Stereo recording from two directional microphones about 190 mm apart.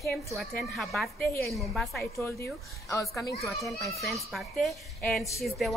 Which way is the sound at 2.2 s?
10° left (ahead or behind).